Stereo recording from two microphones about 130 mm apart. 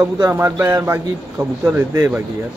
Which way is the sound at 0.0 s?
20° right (ahead or behind).